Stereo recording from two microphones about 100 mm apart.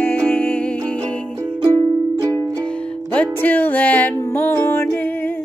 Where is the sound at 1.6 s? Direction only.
45° right (ahead or behind).